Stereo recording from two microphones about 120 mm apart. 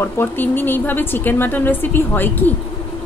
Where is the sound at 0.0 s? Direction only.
15° left (ahead or behind).